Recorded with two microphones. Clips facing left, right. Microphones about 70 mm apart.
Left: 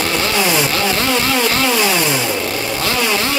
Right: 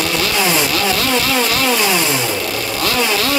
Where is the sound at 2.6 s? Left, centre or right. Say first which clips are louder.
Even; left.